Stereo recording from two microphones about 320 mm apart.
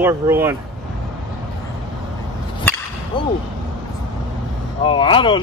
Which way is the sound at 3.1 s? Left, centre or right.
Centre.